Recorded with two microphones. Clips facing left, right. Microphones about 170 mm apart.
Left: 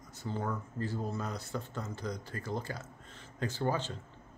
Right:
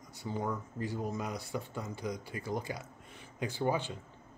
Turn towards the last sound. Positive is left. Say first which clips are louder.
# right 1 dB
turn(degrees=-15)  # may be behind; listen again after turning